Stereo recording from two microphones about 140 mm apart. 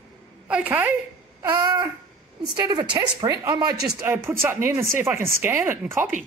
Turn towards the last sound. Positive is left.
turn(degrees=-15)  # may be behind; listen again after turning